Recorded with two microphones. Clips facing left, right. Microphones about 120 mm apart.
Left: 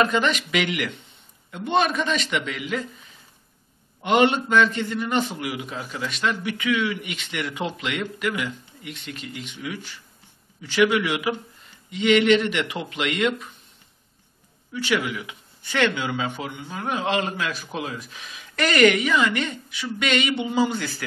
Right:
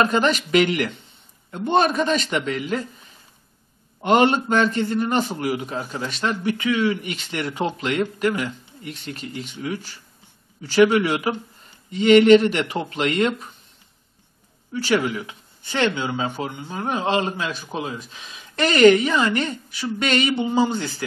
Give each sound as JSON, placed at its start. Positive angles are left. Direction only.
{"t": 0.0, "sound": "a man's voice", "side_deg": -40}
{"t": 14.7, "sound": "a man's voice", "side_deg": -35}